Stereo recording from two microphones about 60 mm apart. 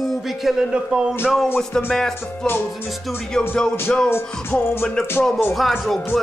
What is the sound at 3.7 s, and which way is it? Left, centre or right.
Music, left.